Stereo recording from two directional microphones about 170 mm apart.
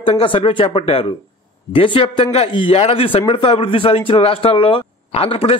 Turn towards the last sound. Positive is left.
turn(degrees=35)  # may be behind; listen again after turning